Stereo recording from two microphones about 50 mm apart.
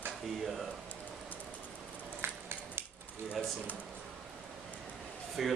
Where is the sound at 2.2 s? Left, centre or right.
Right.